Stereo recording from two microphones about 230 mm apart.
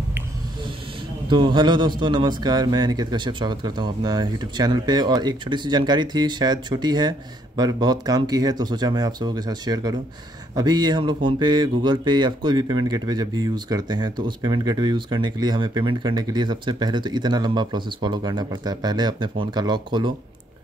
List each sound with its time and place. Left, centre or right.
1.3 s a man's voice: centre